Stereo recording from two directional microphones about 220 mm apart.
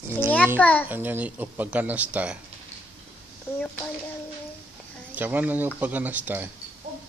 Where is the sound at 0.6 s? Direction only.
5° left (ahead or behind).